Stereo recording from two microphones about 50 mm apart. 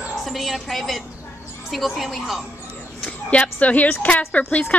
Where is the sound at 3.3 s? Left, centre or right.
Left.